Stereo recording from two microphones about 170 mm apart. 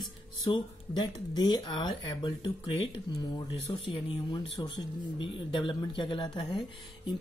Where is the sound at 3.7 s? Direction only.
35° left (ahead or behind).